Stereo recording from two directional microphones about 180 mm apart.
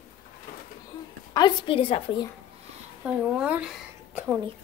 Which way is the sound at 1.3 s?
25° left (ahead or behind).